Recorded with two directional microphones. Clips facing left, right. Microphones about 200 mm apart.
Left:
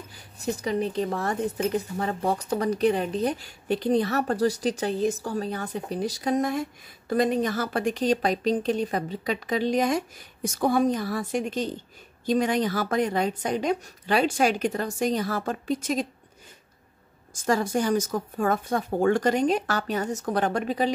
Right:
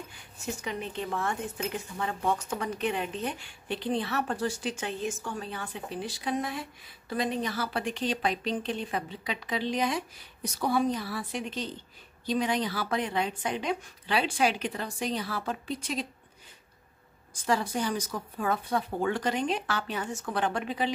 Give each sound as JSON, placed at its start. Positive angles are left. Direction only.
{"t": 0.1, "sound": "a woman's voice", "side_deg": 35}
{"t": 17.3, "sound": "a woman's voice", "side_deg": 45}